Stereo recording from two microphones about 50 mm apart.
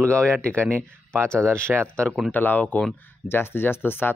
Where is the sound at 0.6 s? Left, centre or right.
Right.